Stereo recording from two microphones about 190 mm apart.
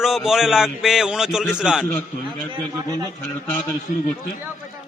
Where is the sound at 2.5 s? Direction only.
20° right (ahead or behind).